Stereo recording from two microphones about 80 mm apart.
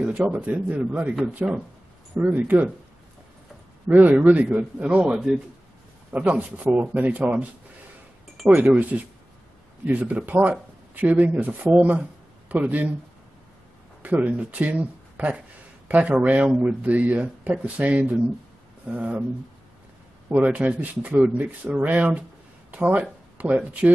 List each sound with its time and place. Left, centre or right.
0.0 s speech: centre
3.9 s speech: right
8.5 s speech: right
9.8 s speech: centre
14.0 s speech: centre
20.2 s speech: centre